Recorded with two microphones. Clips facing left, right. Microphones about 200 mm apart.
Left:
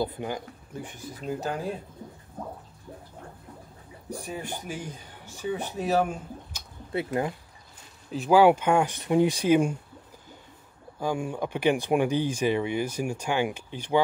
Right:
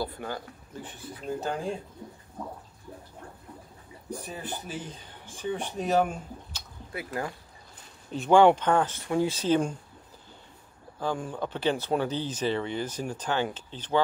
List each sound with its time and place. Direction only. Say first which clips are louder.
0.0 s speech: left 4 dB; 20° left (ahead or behind)
4.1 s speech: left 2 dB; 10° left (ahead or behind)
6.9 s speech: left 6 dB; 25° left (ahead or behind)
8.1 s speech: even; 5° left (ahead or behind)
11.0 s speech: left 2 dB; 10° left (ahead or behind)